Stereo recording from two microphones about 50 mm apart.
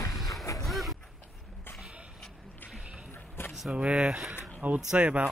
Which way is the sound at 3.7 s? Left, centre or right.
Right.